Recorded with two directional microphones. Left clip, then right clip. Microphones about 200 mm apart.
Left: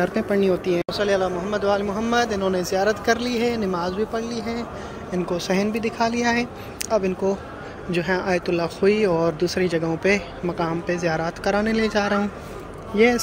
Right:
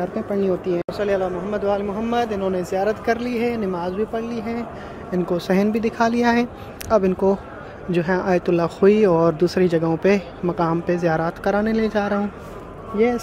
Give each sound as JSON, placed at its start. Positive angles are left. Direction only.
{"t": 0.0, "sound": "speech", "side_deg": 0}
{"t": 0.4, "sound": "a man's voice", "side_deg": -10}
{"t": 5.1, "sound": "a woman's voice", "side_deg": -30}
{"t": 7.9, "sound": "speech", "side_deg": -25}
{"t": 12.9, "sound": "a man's voice", "side_deg": -10}